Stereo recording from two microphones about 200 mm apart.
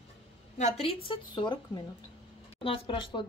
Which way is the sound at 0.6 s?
30° left (ahead or behind).